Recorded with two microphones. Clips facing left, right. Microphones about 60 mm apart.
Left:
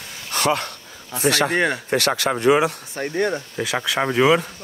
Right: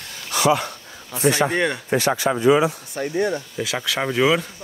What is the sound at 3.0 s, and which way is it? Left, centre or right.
Speech, left.